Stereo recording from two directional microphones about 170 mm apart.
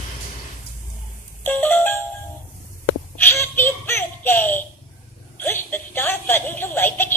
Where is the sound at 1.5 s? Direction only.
10° left (ahead or behind).